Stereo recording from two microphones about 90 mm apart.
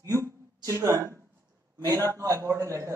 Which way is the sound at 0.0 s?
35° right (ahead or behind).